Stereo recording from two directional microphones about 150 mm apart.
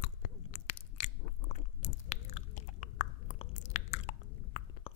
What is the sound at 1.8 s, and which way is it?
Chewing, 50° left (ahead or behind).